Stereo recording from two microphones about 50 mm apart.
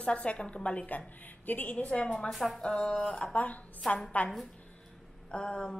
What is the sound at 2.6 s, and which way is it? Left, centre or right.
Speech, left.